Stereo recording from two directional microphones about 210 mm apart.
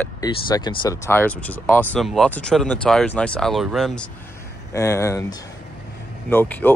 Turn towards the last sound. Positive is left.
turn(degrees=10)  # may be behind; listen again after turning